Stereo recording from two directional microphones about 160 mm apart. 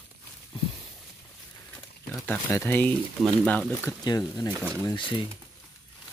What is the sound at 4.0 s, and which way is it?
Speech, 25° left (ahead or behind).